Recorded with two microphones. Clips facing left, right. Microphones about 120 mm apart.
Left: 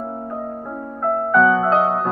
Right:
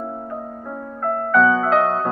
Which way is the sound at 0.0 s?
10° left (ahead or behind).